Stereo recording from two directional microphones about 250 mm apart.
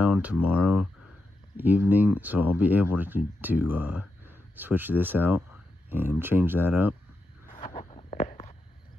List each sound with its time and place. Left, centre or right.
0.0 s speech: centre
7.5 s walk: left